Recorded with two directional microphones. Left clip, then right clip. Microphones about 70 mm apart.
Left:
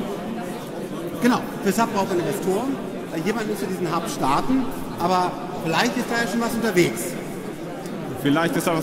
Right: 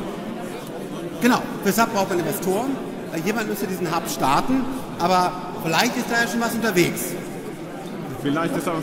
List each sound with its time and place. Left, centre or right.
1.2 s a man's voice: right
8.2 s a man's voice: left